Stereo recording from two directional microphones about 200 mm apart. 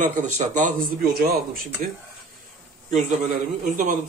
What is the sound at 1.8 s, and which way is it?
Speech, 45° right (ahead or behind).